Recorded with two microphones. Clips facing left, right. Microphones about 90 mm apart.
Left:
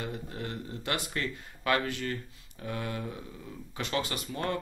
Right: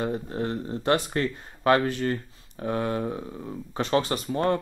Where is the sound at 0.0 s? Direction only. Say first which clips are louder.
Right 9 dB; 35° right (ahead or behind).